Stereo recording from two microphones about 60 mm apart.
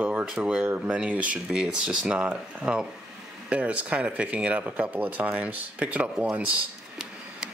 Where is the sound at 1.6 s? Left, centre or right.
Centre.